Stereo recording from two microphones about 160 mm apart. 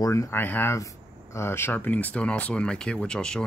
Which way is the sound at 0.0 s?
20° left (ahead or behind).